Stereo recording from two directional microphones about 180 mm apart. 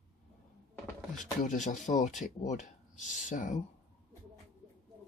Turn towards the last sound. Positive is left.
turn(degrees=45)  # may be behind; listen again after turning